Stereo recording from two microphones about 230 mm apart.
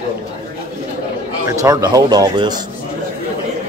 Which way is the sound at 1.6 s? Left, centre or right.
Centre.